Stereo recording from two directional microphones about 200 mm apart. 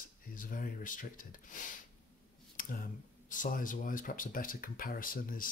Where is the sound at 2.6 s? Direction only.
45° left (ahead or behind).